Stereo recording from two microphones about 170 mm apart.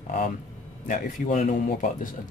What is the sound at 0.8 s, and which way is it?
A man's voice, 50° left (ahead or behind).